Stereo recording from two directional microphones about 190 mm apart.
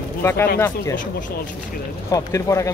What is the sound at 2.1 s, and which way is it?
Speech, 15° left (ahead or behind).